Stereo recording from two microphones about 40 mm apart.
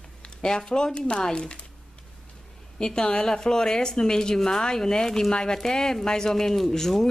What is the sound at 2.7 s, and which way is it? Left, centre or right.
Speech, centre.